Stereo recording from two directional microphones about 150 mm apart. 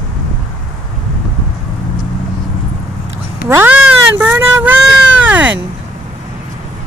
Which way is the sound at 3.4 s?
15° right (ahead or behind).